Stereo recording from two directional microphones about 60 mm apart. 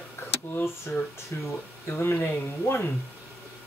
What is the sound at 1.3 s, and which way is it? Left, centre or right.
Speech, left.